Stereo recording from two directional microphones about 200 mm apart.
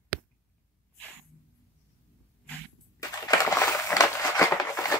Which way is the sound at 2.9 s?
15° left (ahead or behind).